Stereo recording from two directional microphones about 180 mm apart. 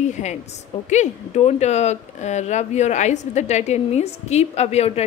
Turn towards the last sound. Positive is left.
turn(degrees=35)  # may be behind; listen again after turning